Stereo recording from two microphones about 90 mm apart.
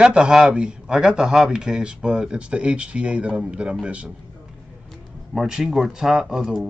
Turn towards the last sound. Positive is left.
turn(degrees=0)  # may be behind; listen again after turning